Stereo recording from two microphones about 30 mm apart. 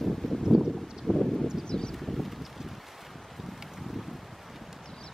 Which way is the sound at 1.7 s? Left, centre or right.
Left.